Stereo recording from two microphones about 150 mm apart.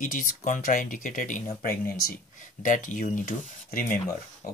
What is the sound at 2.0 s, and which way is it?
Speech, 70° left (ahead or behind).